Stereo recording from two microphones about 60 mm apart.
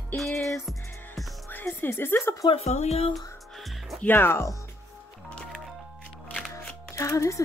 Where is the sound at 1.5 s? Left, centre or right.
Left.